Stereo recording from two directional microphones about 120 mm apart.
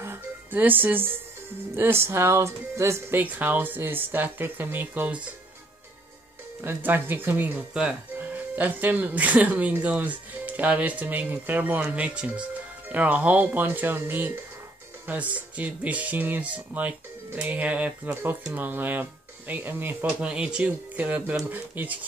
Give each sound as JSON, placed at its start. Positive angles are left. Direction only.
{"t": 0.0, "sound": "music", "side_deg": -15}
{"t": 1.8, "sound": "speech", "side_deg": -20}
{"t": 6.6, "sound": "speech", "side_deg": -15}